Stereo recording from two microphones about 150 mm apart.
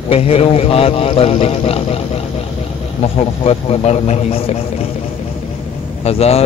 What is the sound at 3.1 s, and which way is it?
Speech, 45° left (ahead or behind).